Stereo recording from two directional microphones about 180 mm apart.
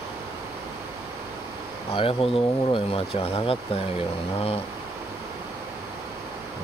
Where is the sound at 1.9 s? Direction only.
30° left (ahead or behind).